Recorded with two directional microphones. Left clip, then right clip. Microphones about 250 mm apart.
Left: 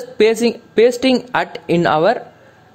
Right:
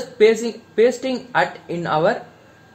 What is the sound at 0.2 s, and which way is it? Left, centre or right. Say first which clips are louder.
Speech: left 2 dB; left.